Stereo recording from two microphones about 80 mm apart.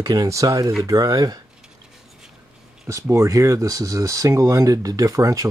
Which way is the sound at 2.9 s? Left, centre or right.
Right.